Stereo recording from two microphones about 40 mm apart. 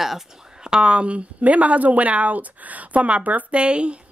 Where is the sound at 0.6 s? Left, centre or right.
Right.